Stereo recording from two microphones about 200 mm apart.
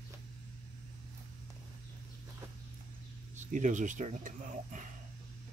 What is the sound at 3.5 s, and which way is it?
Speech, 40° right (ahead or behind).